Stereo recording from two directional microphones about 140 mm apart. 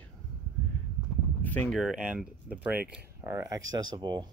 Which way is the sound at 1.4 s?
10° left (ahead or behind).